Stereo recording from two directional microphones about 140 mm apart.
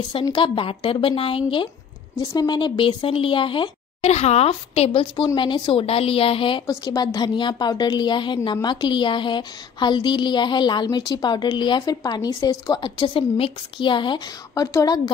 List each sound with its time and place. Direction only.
0.1 s a woman's voice: 35° left (ahead or behind)
6.6 s a woman's voice: 25° left (ahead or behind)